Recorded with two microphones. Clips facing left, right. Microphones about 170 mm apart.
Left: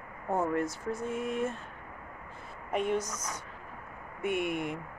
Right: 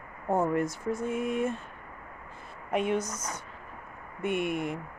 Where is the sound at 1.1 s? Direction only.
5° right (ahead or behind).